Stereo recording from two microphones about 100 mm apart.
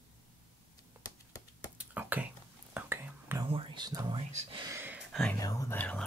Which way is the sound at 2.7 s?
20° right (ahead or behind).